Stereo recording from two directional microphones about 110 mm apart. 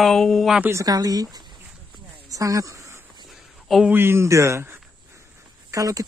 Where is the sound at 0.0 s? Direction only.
5° left (ahead or behind).